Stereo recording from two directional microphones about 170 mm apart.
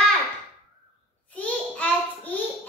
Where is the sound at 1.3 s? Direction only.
10° left (ahead or behind).